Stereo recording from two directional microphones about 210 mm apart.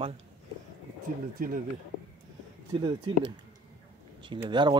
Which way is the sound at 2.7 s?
20° right (ahead or behind).